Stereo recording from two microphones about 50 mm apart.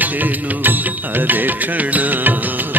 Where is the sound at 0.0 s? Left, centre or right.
Right.